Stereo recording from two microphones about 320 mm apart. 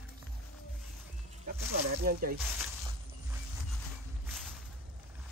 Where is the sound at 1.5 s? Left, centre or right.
Right.